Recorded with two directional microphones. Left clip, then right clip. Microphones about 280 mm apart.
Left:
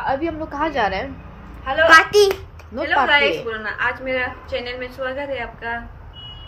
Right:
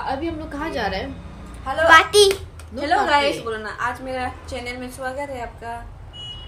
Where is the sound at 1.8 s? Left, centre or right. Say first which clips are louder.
Even; centre.